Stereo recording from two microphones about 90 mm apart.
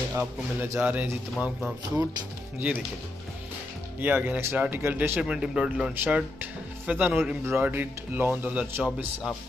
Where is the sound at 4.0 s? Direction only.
20° right (ahead or behind).